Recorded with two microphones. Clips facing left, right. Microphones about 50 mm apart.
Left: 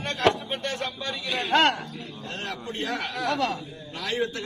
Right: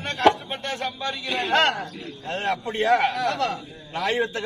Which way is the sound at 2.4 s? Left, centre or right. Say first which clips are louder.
Right 10 dB; right.